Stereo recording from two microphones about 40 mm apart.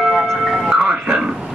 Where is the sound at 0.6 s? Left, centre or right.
Centre.